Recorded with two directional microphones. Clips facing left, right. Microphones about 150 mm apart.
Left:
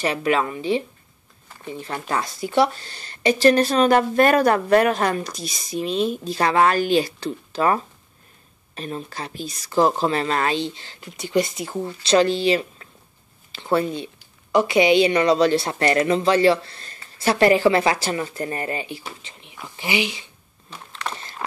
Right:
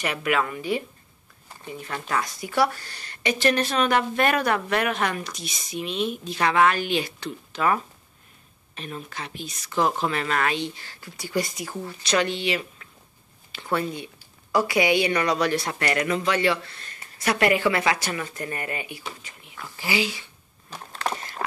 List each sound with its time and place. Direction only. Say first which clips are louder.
0.0 s a woman's voice: left 4 dB; 30° left (ahead or behind)
19.2 s speech: left 1 dB; 20° left (ahead or behind)
20.7 s a sound: right 2 dB; 40° right (ahead or behind)